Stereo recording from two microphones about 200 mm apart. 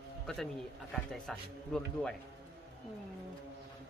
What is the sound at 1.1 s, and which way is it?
Speech, centre (ahead or behind).